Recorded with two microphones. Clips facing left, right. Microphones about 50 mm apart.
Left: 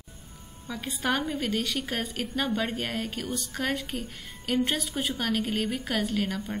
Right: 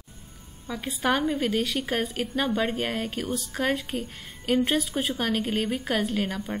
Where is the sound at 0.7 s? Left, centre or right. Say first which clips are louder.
Right 3 dB; centre.